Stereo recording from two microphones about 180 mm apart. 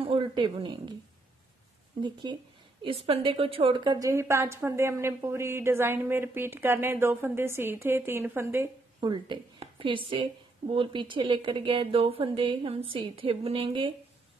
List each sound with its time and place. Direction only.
0.0 s a woman's voice: 30° right (ahead or behind)
2.0 s a woman's voice: 25° right (ahead or behind)
9.0 s a woman's voice: 25° right (ahead or behind)